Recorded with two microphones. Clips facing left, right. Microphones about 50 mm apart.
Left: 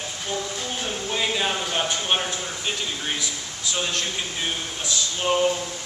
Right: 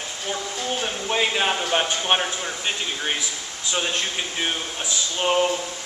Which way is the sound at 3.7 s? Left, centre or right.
Right.